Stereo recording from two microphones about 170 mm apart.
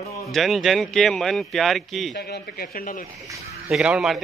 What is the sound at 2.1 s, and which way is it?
Speech, 70° left (ahead or behind).